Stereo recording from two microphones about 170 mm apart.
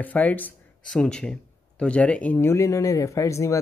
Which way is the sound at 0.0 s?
10° left (ahead or behind).